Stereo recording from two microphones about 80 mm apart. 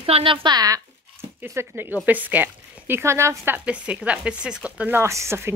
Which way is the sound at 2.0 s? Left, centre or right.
Right.